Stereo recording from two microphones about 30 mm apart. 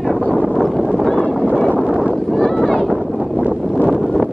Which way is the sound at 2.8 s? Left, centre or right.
Centre.